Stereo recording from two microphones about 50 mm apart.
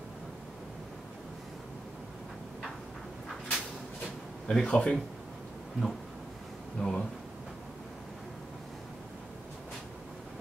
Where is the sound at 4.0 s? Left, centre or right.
Centre.